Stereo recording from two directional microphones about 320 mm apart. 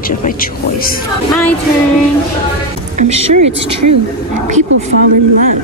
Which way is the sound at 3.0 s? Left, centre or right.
Centre.